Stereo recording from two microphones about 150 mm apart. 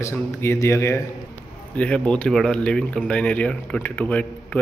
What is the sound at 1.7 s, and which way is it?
Speech, 5° left (ahead or behind).